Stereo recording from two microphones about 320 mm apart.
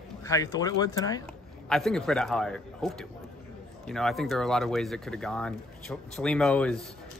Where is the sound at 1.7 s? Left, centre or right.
Centre.